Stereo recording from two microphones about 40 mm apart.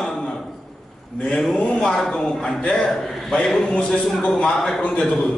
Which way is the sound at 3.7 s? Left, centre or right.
Left.